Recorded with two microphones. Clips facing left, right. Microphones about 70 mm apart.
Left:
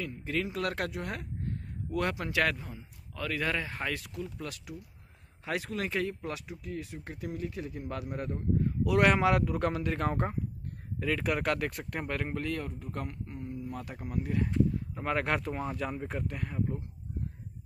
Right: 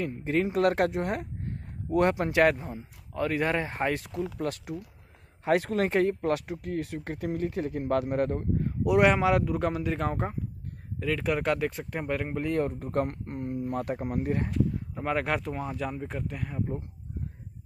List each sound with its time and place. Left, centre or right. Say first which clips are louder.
0.0 s speech: right 6 dB; right
4.4 s speech: right 9 dB; right
8.8 s speech: right 3 dB; centre
12.5 s speech: right 10 dB; right
15.0 s speech: right 3 dB; centre